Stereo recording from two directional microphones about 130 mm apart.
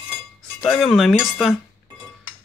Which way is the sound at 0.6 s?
Centre (ahead or behind).